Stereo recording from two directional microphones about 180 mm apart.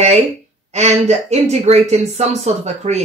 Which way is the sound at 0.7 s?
35° right (ahead or behind).